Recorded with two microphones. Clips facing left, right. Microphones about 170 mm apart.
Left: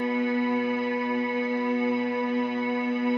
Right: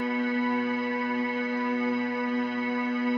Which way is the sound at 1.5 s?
20° left (ahead or behind).